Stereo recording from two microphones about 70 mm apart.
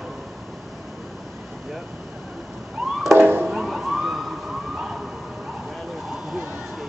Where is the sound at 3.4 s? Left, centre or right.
Centre.